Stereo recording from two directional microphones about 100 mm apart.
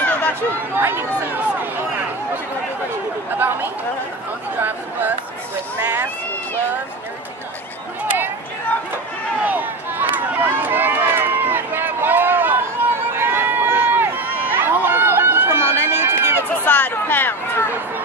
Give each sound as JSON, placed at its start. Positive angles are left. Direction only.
{"t": 0.7, "sound": "speech", "side_deg": -20}
{"t": 3.3, "sound": "speech", "side_deg": -20}
{"t": 9.4, "sound": "run", "side_deg": -20}
{"t": 16.6, "sound": "a sound", "side_deg": 20}